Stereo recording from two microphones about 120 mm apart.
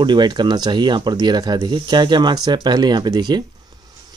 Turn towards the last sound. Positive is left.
turn(degrees=-35)  # may be behind; listen again after turning